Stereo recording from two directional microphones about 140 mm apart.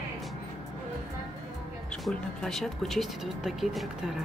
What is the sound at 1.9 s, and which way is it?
Speech, 5° left (ahead or behind).